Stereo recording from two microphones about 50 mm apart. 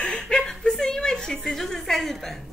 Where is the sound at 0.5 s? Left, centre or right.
Centre.